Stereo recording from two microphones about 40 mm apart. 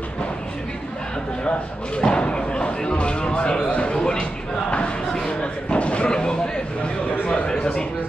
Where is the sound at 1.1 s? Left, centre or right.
Left.